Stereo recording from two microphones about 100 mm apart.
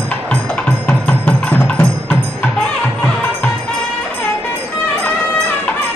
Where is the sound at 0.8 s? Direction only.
15° left (ahead or behind).